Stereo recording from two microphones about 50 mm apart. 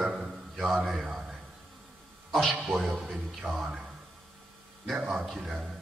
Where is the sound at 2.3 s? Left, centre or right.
Centre.